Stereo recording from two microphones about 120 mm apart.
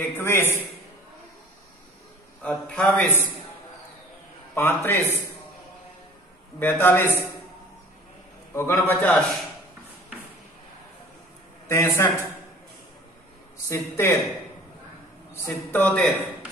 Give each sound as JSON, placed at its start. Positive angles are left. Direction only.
{"t": 0.0, "sound": "a man's voice", "side_deg": 20}
{"t": 2.4, "sound": "a man's voice", "side_deg": 10}
{"t": 4.6, "sound": "a man's voice", "side_deg": 20}
{"t": 6.6, "sound": "a man's voice", "side_deg": 15}
{"t": 8.5, "sound": "a man's voice", "side_deg": 20}
{"t": 11.7, "sound": "a man's voice", "side_deg": 20}
{"t": 13.7, "sound": "a man's voice", "side_deg": 20}
{"t": 15.4, "sound": "a man's voice", "side_deg": 15}